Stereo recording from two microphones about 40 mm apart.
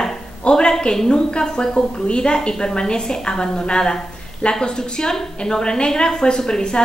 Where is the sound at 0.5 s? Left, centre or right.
Left.